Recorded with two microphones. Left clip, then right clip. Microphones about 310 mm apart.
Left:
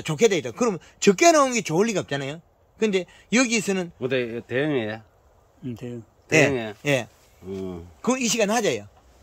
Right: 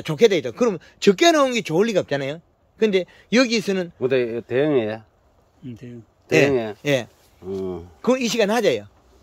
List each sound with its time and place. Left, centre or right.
0.0 s speech: centre
4.0 s speech: centre
5.6 s speech: centre
6.5 s speech: right
6.8 s speech: centre